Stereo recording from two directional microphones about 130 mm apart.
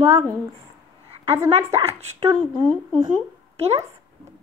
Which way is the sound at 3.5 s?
55° right (ahead or behind).